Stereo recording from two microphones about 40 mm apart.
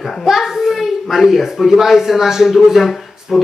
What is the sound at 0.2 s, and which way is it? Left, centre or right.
A child's voice, centre.